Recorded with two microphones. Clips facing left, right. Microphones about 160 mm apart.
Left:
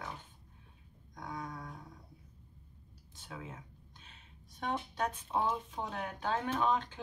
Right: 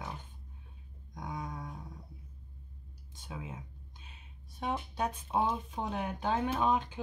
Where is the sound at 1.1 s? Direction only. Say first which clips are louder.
Right 2 dB; 15° right (ahead or behind).